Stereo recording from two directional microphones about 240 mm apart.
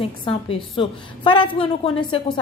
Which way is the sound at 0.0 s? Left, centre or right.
Left.